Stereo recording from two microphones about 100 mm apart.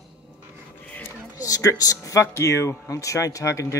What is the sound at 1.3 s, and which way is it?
Speech, 35° left (ahead or behind).